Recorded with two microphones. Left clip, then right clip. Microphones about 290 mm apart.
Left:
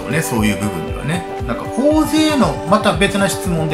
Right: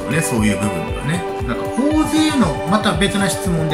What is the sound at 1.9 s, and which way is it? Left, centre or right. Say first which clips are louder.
Speech: left 2 dB; centre.